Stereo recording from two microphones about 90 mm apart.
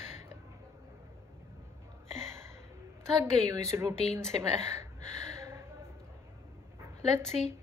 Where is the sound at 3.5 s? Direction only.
35° right (ahead or behind).